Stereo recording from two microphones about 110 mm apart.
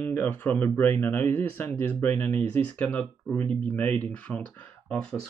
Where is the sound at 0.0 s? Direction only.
15° left (ahead or behind).